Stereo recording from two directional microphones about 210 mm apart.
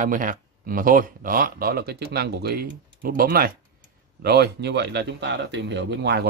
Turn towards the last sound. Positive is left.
turn(degrees=-50)  # may be behind; listen again after turning